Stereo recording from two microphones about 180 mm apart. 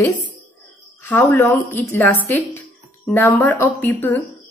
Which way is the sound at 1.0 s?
10° left (ahead or behind).